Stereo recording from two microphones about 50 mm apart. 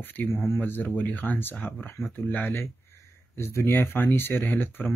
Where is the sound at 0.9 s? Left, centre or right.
Left.